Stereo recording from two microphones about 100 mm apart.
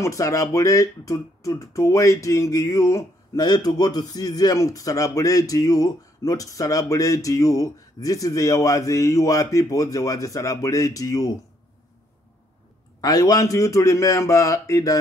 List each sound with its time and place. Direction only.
0.0 s speech: 35° left (ahead or behind)
13.0 s speech: 35° left (ahead or behind)